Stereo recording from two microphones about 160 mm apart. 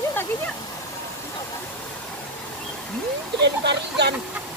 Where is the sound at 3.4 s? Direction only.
90° right.